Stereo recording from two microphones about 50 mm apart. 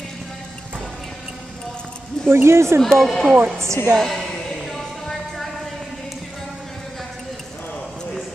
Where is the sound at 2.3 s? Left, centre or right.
Right.